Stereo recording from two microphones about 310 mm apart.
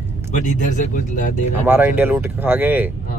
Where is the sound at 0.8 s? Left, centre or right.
Left.